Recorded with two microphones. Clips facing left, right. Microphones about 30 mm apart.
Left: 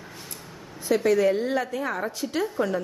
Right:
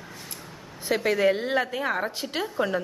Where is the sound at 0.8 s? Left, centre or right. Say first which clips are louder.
Left 2 dB; right.